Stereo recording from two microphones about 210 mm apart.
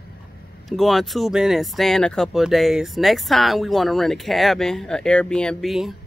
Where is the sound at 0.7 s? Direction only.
Centre (ahead or behind).